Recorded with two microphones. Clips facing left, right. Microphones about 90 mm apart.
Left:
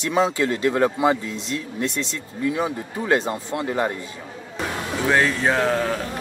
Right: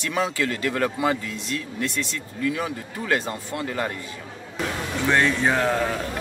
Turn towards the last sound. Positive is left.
turn(degrees=0)  # may be behind; listen again after turning